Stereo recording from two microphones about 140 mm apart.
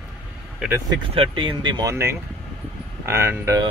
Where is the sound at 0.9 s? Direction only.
40° right (ahead or behind).